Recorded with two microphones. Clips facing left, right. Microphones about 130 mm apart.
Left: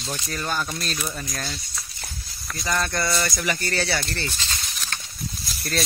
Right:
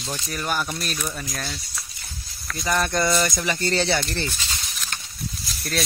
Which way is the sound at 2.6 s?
15° right (ahead or behind).